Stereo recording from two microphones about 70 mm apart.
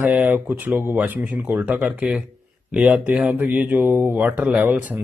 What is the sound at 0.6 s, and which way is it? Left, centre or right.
Speech, right.